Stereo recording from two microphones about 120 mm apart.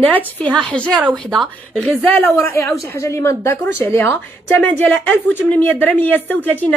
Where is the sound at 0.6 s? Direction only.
5° left (ahead or behind).